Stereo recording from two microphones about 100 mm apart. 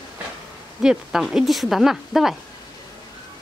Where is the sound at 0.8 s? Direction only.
5° right (ahead or behind).